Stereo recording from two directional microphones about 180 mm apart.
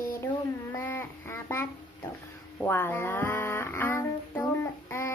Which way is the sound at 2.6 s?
10° left (ahead or behind).